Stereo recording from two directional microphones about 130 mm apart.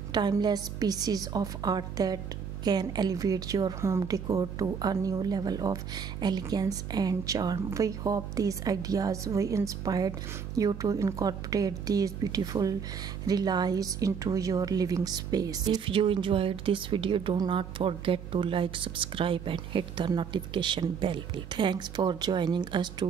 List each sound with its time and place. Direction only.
0.1 s a woman's voice: 30° right (ahead or behind)